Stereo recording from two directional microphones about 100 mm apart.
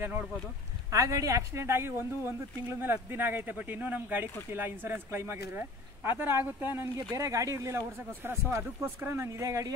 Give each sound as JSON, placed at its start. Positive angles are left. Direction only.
{"t": 0.8, "sound": "speech", "side_deg": -30}